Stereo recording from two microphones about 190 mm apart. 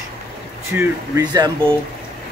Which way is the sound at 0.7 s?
20° right (ahead or behind).